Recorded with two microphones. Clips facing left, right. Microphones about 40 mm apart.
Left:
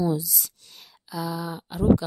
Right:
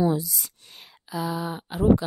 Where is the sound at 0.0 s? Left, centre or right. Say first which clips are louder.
Right 2 dB; right.